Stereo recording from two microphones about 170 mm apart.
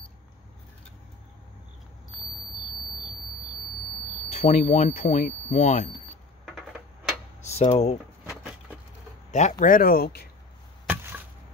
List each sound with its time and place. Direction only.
4.3 s speech: 45° left (ahead or behind)
7.5 s speech: 40° left (ahead or behind)
9.3 s speech: 45° left (ahead or behind); by 10.2 s 60° left (ahead or behind)